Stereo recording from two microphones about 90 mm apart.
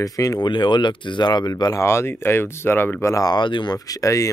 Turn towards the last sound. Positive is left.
turn(degrees=40)  # may be behind; listen again after turning